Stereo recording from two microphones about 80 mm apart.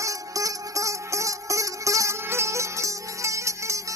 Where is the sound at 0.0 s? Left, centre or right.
Right.